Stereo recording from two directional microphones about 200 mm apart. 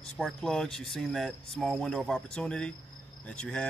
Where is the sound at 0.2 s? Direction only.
Centre (ahead or behind).